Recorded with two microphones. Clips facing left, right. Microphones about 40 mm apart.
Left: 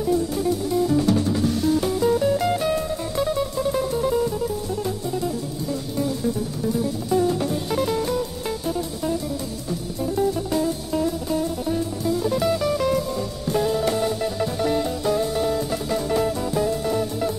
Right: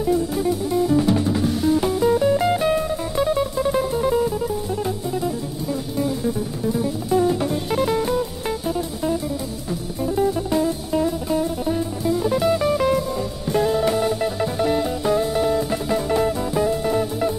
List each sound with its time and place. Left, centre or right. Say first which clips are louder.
0.0 s music: right 2 dB; centre
5.2 s music: right 1 dB; centre